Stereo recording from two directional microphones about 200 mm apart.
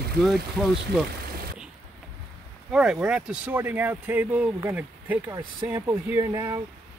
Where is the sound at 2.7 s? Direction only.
5° right (ahead or behind).